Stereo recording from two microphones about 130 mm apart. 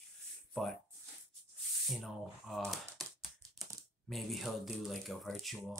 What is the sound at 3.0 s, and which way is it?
Tap, centre (ahead or behind).